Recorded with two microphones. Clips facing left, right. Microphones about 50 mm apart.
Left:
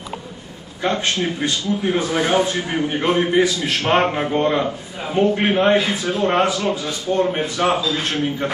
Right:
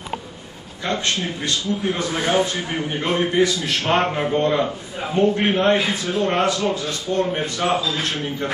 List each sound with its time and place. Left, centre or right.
0.8 s speech: centre